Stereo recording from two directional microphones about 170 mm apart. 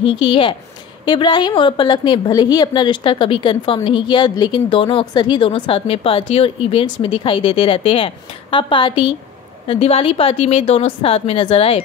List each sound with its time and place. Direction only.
0.0 s a woman's voice: 30° left (ahead or behind)